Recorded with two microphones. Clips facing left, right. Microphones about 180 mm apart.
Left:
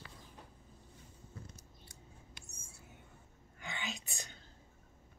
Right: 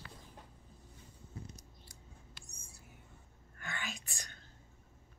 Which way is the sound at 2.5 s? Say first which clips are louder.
Left 1 dB; 25° left (ahead or behind).